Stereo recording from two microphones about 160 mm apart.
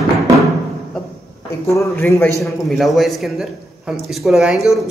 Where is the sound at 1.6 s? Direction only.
20° left (ahead or behind).